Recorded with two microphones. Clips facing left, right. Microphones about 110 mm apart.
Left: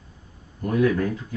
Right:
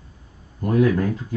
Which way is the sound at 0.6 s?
25° right (ahead or behind).